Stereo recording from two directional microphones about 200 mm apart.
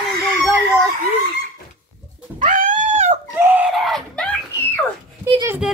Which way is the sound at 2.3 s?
40° right (ahead or behind).